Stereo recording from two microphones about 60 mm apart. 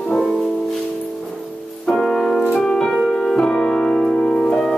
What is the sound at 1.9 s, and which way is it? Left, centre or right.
Music, centre.